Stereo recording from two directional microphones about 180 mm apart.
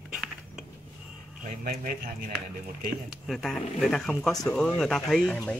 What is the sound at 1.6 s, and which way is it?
Speech, 55° right (ahead or behind).